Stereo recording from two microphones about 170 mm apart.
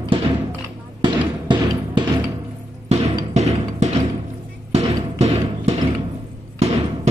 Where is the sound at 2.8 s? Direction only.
40° right (ahead or behind).